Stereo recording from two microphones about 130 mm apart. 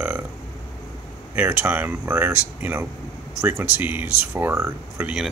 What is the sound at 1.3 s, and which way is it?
Speech, 15° right (ahead or behind).